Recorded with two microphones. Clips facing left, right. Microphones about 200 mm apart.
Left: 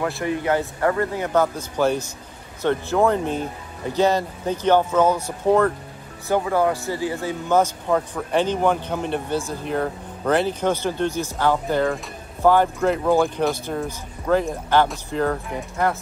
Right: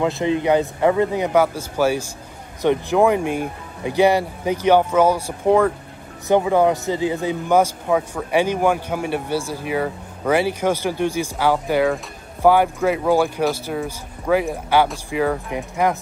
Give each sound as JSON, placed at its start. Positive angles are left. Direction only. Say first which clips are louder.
{"t": 0.0, "sound": "speech", "louder": "right 4 dB", "side_deg": -20}